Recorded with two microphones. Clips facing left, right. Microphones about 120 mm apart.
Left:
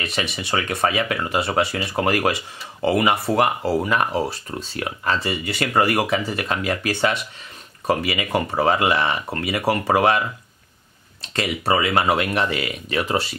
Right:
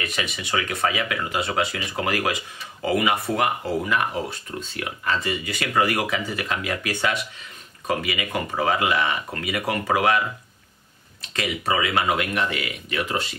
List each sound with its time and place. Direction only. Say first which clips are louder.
0.0 s speech: left 3 dB; 30° left (ahead or behind)
11.3 s speech: left 3 dB; 35° left (ahead or behind)